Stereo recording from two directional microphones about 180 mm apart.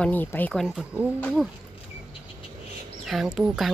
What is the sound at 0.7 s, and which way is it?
Speech, 5° right (ahead or behind).